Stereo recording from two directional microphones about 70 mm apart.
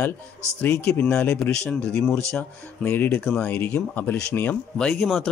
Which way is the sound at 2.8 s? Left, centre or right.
Left.